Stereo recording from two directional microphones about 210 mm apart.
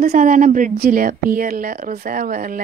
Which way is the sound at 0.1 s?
40° right (ahead or behind).